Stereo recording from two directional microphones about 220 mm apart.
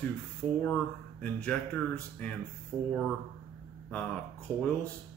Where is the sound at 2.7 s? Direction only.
5° right (ahead or behind).